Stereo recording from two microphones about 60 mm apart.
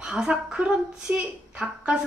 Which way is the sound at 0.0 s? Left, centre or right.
Centre.